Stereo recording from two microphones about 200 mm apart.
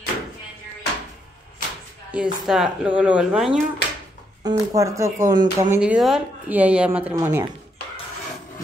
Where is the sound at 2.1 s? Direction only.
5° right (ahead or behind).